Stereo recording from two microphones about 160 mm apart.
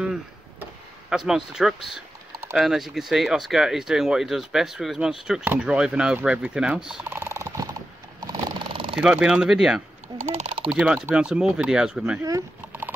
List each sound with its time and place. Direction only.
0.0 s vehicle: 5° right (ahead or behind)
1.1 s speech: 5° right (ahead or behind)
8.2 s sewing machine: 25° right (ahead or behind)
8.9 s speech: 5° right (ahead or behind)
10.3 s a sound: 45° right (ahead or behind)
10.7 s speech: 5° right (ahead or behind)